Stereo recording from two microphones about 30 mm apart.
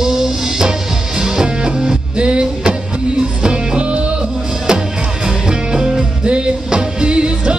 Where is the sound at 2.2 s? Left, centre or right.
Right.